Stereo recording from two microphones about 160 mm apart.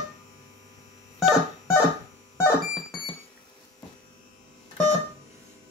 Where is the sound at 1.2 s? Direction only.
Centre (ahead or behind).